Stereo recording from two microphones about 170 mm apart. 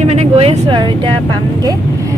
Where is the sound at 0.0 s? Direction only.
40° right (ahead or behind).